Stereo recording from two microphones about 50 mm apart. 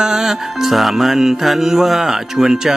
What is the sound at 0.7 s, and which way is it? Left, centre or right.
Speech, centre.